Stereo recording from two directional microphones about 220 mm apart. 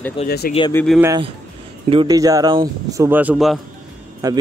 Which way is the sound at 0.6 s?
15° left (ahead or behind).